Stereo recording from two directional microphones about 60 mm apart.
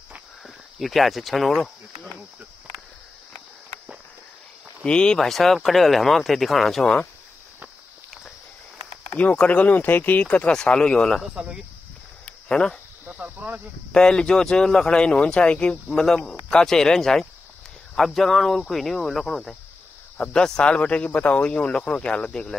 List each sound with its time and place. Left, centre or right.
0.7 s speech: centre
4.8 s speech: centre
5.2 s speech: centre
9.1 s speech: left
10.5 s speech: centre
11.4 s speech: centre
12.3 s a sound: centre
13.0 s cricket: right
13.9 s speech: centre
15.9 s speech: centre